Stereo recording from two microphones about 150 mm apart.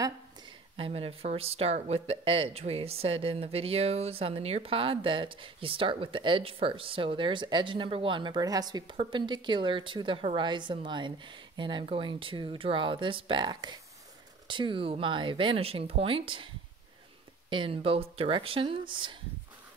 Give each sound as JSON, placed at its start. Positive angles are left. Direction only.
{"t": 0.7, "sound": "speech", "side_deg": -40}
{"t": 17.5, "sound": "speech", "side_deg": -35}